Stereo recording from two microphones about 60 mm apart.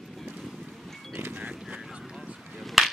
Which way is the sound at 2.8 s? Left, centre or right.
Centre.